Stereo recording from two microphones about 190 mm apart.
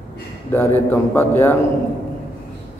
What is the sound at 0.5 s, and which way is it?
A man's voice, 10° left (ahead or behind).